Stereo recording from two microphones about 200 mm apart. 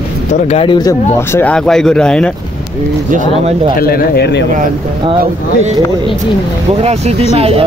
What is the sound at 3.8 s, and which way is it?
Speech, 50° left (ahead or behind).